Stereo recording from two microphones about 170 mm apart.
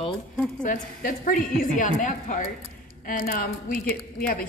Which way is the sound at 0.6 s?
50° left (ahead or behind).